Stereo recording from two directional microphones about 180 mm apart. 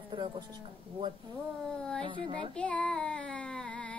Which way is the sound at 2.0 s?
30° right (ahead or behind).